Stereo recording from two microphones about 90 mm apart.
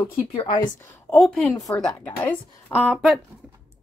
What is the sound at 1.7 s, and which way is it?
Speech, 20° left (ahead or behind).